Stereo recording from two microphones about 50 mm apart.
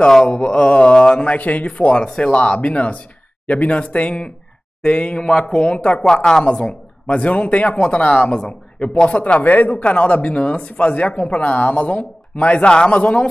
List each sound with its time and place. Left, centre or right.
0.3 s speech: left
1.2 s speech: left
5.2 s speech: centre
6.4 s speech: left
9.2 s speech: left